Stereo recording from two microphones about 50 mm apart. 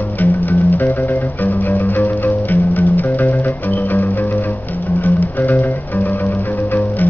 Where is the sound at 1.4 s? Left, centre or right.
Left.